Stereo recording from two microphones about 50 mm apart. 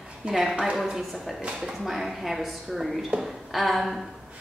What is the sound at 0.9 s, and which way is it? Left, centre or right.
A woman's voice, centre.